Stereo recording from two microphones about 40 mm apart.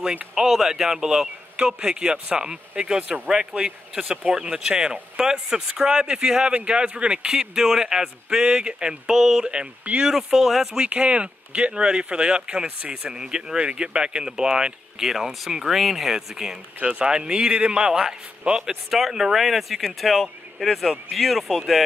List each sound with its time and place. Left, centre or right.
0.3 s speech: centre
1.8 s speech: right
7.5 s speech: centre
10.7 s speech: right
15.1 s a man's voice: centre
18.7 s speech: centre